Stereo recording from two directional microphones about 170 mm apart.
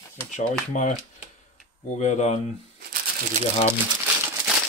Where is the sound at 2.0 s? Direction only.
45° left (ahead or behind).